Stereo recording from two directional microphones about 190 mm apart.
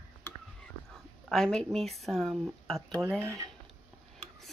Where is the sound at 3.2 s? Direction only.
15° right (ahead or behind).